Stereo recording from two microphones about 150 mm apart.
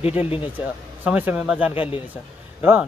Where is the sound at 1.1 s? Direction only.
10° right (ahead or behind).